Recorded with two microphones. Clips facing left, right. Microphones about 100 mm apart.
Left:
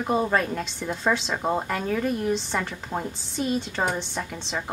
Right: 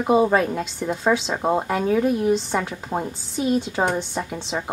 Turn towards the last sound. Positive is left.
turn(degrees=-5)  # may be behind; listen again after turning